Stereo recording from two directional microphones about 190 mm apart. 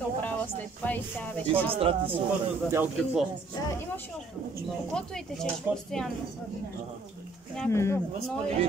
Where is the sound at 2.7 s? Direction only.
5° right (ahead or behind).